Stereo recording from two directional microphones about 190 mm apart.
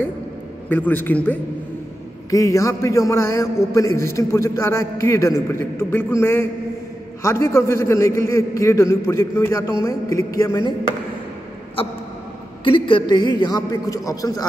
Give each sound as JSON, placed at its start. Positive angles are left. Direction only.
{"t": 0.7, "sound": "a man's voice", "side_deg": 10}
{"t": 12.6, "sound": "a man's voice", "side_deg": 25}